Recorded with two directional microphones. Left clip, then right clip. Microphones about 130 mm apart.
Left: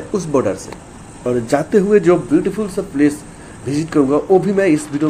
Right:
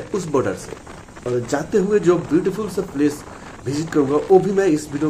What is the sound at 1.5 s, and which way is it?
Speech, 35° left (ahead or behind).